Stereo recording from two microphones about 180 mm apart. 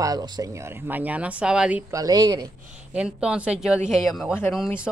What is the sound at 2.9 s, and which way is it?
A woman's voice, 5° right (ahead or behind).